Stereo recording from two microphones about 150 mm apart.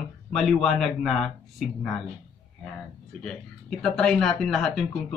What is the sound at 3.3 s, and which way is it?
Speech, 5° left (ahead or behind).